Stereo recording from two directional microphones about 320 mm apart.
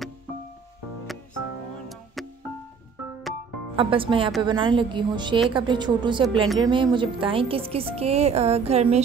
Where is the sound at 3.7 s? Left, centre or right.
Centre.